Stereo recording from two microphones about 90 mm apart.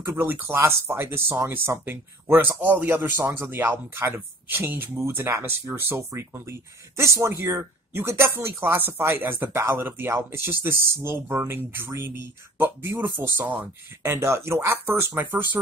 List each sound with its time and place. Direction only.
0.0 s speech: 25° right (ahead or behind)
14.1 s speech: 30° right (ahead or behind)